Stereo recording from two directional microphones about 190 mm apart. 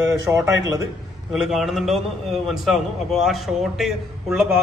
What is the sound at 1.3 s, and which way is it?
A man's voice, centre (ahead or behind).